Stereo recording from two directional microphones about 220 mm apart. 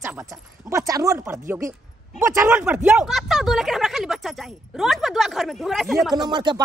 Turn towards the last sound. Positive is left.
turn(degrees=-20)  # may be behind; listen again after turning